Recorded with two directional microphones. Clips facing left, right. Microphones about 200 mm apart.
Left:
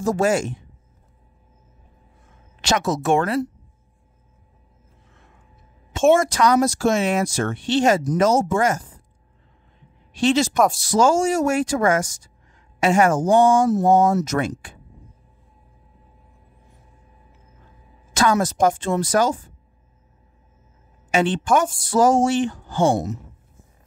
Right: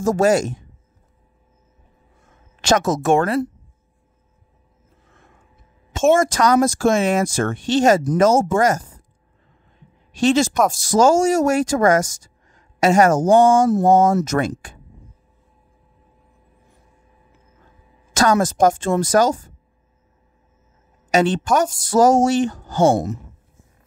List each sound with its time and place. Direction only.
0.0 s speech: 40° right (ahead or behind)
2.6 s speech: 45° right (ahead or behind)
6.1 s speech: 45° right (ahead or behind)
10.1 s speech: 45° right (ahead or behind)
18.1 s speech: 45° right (ahead or behind)
21.1 s speech: 40° right (ahead or behind)